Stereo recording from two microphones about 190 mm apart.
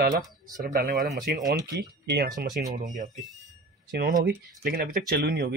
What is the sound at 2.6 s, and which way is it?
Speech, 55° right (ahead or behind).